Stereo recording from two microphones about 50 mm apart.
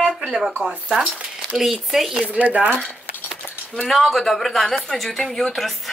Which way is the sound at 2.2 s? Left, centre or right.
Right.